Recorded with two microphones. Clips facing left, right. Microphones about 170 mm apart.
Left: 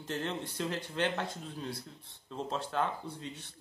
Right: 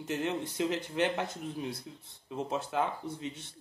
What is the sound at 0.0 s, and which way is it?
Speech, 15° right (ahead or behind).